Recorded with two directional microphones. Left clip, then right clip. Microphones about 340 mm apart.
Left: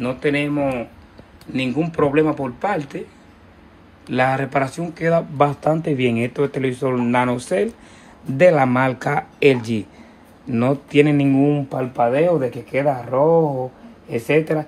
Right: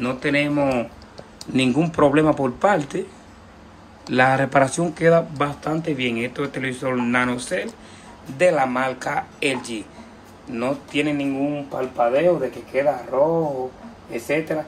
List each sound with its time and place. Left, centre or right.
0.0 s speech: centre
4.1 s speech: centre
5.4 s speech: centre; by 13.4 s left